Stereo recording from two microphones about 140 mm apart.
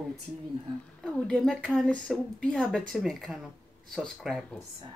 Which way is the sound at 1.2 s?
5° left (ahead or behind).